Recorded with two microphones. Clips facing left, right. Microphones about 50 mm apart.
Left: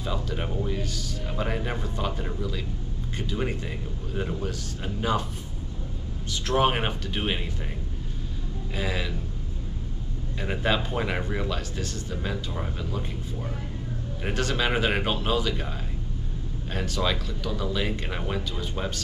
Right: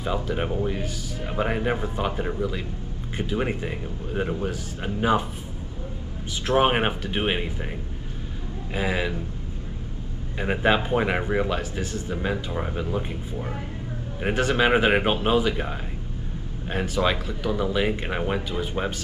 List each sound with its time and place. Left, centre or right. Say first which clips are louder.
0.0 s speech: right 5 dB; right
6.4 s speech: right 3 dB; right
8.7 s speech: right 5 dB; right
10.4 s speech: right 5 dB; right
16.7 s speech: right 4 dB; centre